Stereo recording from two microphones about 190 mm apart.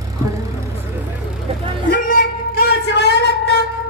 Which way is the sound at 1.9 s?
45° left (ahead or behind).